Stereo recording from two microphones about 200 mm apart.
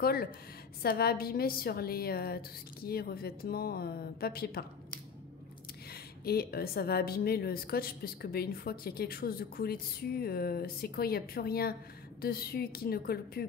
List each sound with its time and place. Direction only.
0.0 s a woman's voice: 50° left (ahead or behind)
6.2 s a woman's voice: 50° left (ahead or behind)